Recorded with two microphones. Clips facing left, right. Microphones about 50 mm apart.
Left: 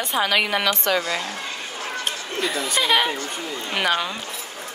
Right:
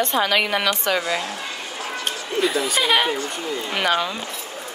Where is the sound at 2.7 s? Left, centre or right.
Centre.